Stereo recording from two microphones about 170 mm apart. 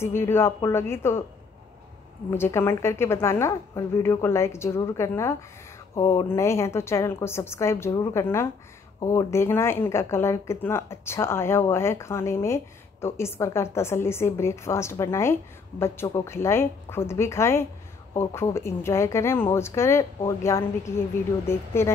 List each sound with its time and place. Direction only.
0.0 s speech: 15° left (ahead or behind)
2.3 s speech: 15° left (ahead or behind)